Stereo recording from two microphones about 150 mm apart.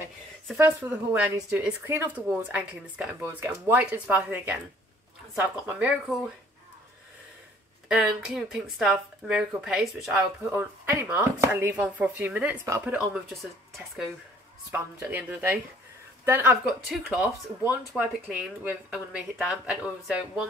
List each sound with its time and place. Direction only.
0.6 s speech: 20° right (ahead or behind)
7.9 s speech: 5° right (ahead or behind)
14.7 s speech: 10° right (ahead or behind)
16.6 s speech: 5° right (ahead or behind)